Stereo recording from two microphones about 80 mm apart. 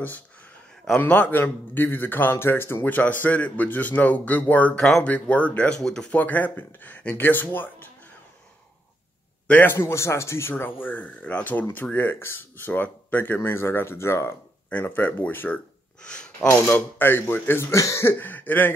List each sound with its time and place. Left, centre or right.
0.9 s a man's voice: left
4.7 s speech: centre
5.0 s speech: centre
5.8 s speech: centre
6.1 s a man's voice: left
9.5 s a man's voice: left
10.8 s a man's voice: left
14.7 s a man's voice: left
16.0 s speech: centre
16.6 s a man's voice: left